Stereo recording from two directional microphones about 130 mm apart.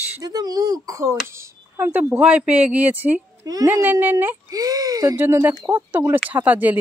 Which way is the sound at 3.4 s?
25° right (ahead or behind).